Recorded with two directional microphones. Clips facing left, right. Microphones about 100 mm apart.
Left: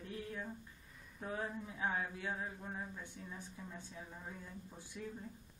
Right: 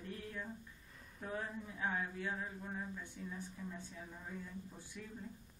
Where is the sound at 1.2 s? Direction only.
15° left (ahead or behind).